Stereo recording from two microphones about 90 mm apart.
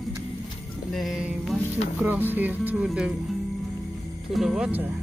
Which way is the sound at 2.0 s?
20° right (ahead or behind).